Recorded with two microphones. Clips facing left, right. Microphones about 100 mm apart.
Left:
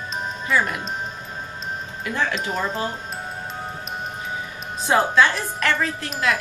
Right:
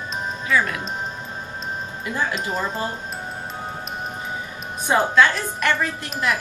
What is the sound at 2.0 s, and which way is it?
Speech, 10° right (ahead or behind).